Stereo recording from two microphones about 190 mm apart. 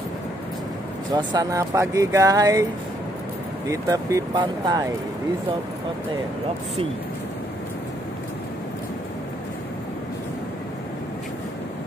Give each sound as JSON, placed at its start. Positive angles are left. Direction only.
{"t": 1.1, "sound": "speech", "side_deg": -20}
{"t": 3.6, "sound": "speech", "side_deg": -15}